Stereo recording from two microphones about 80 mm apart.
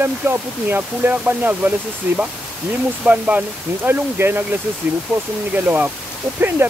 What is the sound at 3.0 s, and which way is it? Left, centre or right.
Speech, centre.